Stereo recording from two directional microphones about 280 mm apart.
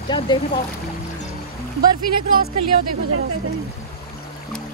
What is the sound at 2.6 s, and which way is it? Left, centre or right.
Speech, right.